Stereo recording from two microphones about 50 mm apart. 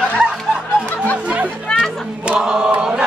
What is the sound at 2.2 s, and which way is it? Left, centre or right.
Choir, centre.